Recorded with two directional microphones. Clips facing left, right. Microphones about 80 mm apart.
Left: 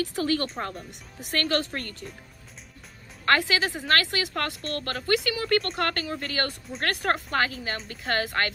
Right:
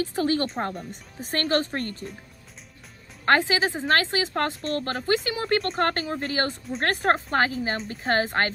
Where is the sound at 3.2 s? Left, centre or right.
Right.